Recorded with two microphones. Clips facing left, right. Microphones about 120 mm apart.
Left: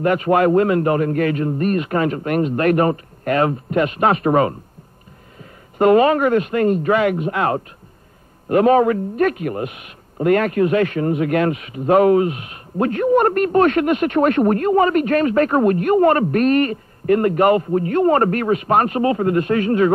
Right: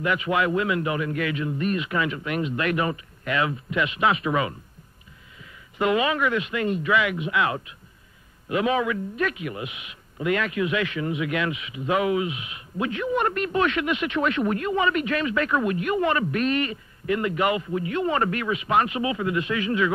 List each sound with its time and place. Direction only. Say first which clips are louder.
0.0 s a man's voice: left 8 dB; 45° left (ahead or behind)